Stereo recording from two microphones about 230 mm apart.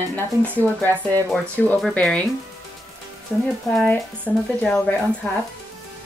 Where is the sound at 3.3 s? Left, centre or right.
Centre.